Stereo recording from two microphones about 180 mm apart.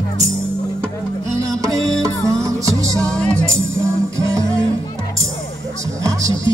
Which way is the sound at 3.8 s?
15° right (ahead or behind).